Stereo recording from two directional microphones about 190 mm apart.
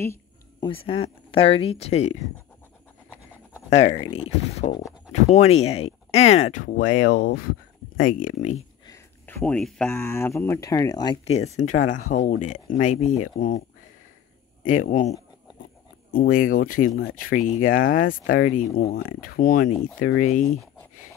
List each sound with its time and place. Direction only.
0.0 s a sound: 15° left (ahead or behind)
0.7 s speech: 30° left (ahead or behind)
3.9 s speech: 30° left (ahead or behind)
8.8 s a sound: 15° left (ahead or behind)
9.8 s speech: 15° left (ahead or behind)
11.2 s speech: 35° left (ahead or behind)
14.6 s speech: 40° left (ahead or behind)
17.8 s speech: 90° left
18.3 s speech: 40° left (ahead or behind)
18.8 s speech: 55° left (ahead or behind)